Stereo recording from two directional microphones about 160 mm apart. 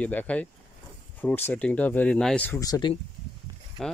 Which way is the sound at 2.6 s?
25° left (ahead or behind).